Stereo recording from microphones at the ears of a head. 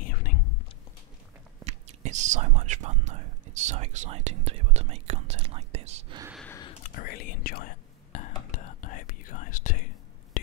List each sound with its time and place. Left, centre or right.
0.0 s whispering: left
1.6 s speech: right
6.5 s whispering: left